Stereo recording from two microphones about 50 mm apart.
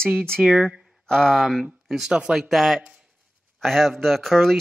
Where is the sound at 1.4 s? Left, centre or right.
Centre.